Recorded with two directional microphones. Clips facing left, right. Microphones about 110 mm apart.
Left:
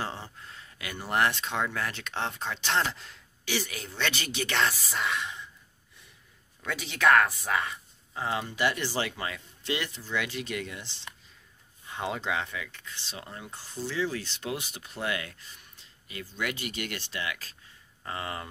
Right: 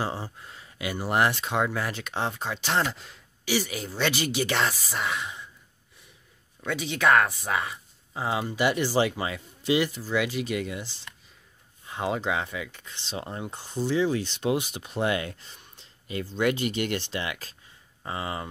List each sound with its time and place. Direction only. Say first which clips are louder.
0.0 s speech: right 5 dB; 10° right (ahead or behind)
6.7 s speech: right 1 dB; centre (ahead or behind); by 17.5 s 25° right (ahead or behind)
18.0 s speech: right 3 dB; 15° right (ahead or behind)